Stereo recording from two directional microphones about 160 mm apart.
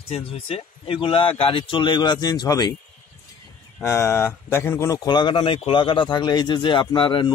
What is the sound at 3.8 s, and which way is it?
Speech, 15° left (ahead or behind).